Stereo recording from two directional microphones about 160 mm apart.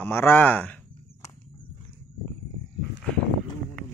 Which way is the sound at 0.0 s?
15° left (ahead or behind).